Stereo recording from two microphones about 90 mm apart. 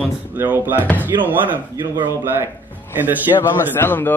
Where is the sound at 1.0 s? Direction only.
20° right (ahead or behind).